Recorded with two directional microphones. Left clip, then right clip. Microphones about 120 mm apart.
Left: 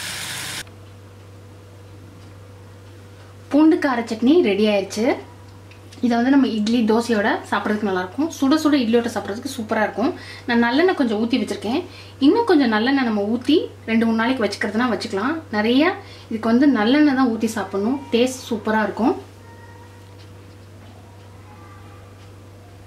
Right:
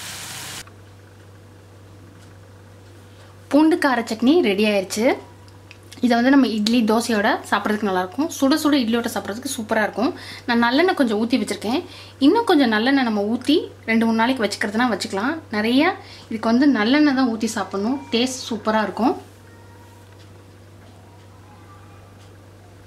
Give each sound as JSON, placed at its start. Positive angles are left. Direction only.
{"t": 3.4, "sound": "speech", "side_deg": -50}